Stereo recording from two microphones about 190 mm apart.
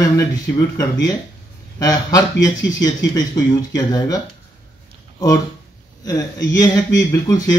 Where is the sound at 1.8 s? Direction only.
20° left (ahead or behind).